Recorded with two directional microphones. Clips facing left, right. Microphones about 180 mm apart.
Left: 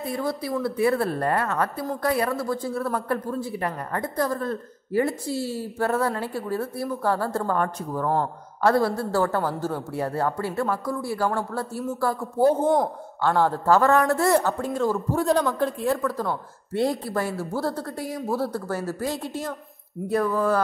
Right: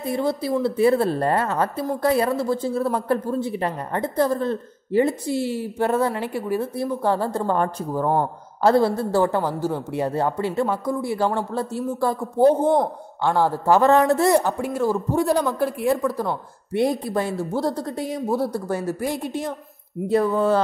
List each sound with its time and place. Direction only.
0.0 s speech: 25° right (ahead or behind)
7.5 s speech: 30° right (ahead or behind)